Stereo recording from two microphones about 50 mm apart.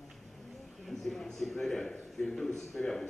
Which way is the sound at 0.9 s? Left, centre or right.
Centre.